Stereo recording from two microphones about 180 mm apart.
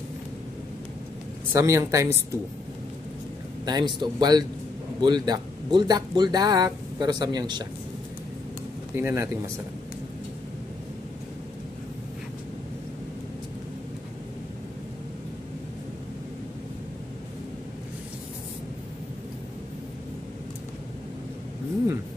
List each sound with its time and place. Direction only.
1.5 s speech: 15° right (ahead or behind)
3.6 s speech: 25° right (ahead or behind)
8.9 s speech: 15° right (ahead or behind)